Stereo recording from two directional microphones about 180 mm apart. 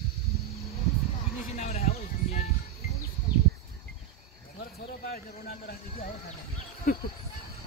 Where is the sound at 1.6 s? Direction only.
35° left (ahead or behind).